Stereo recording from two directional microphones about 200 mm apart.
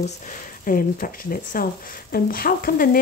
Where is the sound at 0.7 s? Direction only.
45° left (ahead or behind).